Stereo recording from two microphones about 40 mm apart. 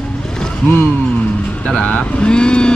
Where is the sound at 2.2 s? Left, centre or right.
Left.